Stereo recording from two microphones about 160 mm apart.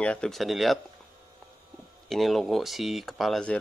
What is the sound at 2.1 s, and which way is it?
Speech, centre (ahead or behind).